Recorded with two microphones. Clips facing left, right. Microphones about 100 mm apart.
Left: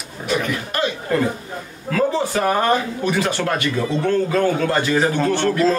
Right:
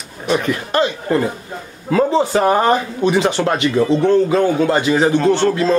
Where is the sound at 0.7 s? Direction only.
30° right (ahead or behind).